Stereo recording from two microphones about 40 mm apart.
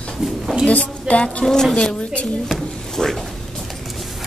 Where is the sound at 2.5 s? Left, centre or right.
Centre.